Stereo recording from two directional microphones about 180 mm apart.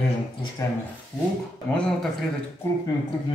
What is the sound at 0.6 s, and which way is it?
Speech, 15° left (ahead or behind).